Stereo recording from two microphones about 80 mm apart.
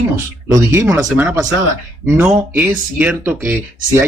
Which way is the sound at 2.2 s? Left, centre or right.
Right.